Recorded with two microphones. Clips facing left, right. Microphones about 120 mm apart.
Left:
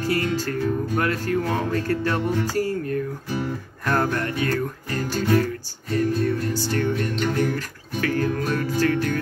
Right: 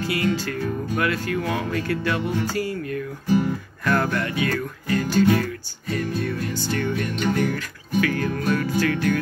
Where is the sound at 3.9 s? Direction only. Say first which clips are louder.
Even; 35° left (ahead or behind).